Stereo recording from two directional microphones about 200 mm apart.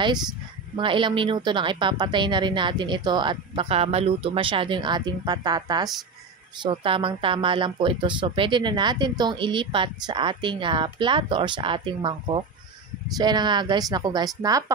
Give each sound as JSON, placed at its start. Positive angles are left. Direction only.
{"t": 0.7, "sound": "speech", "side_deg": -25}